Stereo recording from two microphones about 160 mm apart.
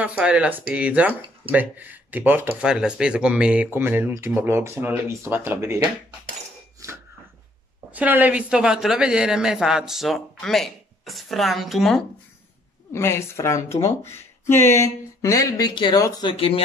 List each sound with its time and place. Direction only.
0.0 s speech: 10° right (ahead or behind)
6.8 s a sound: 20° right (ahead or behind)
7.9 s speech: 10° right (ahead or behind)
12.9 s speech: 15° left (ahead or behind); by 16.6 s 35° left (ahead or behind)